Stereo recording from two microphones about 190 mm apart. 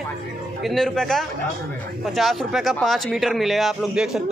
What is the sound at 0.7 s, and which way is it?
Speech, centre (ahead or behind).